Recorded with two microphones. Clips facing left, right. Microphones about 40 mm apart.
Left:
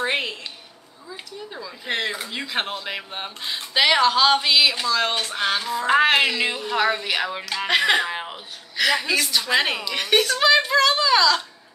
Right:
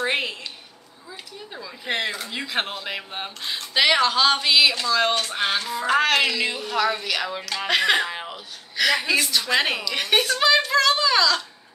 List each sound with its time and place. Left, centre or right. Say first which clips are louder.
0.0 s a sound: even; centre
1.5 s speech: even; centre
5.3 s music: left 1 dB; centre
5.6 s speech: left 2 dB; centre
5.9 s speech: left 2 dB; centre